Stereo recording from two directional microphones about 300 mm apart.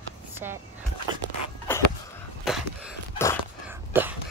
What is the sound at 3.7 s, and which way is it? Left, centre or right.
Whispering, centre.